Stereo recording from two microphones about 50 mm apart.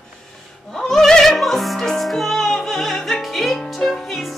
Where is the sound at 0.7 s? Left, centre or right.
Centre.